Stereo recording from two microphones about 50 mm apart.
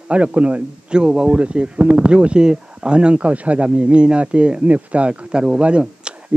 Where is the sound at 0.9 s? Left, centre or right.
Centre.